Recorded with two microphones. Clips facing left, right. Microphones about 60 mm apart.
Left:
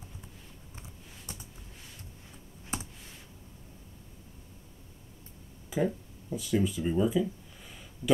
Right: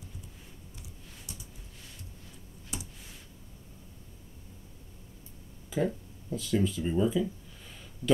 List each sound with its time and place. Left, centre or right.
0.7 s a sound: left
2.7 s computer keyboard: left
5.7 s speech: centre